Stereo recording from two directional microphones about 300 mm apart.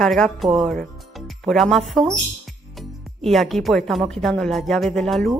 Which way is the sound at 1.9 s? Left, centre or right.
Centre.